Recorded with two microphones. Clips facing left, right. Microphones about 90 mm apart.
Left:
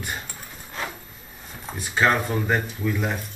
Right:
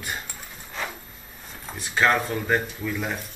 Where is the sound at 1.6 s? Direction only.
10° left (ahead or behind).